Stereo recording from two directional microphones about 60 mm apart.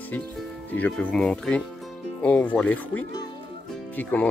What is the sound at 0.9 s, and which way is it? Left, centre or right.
Speech, centre.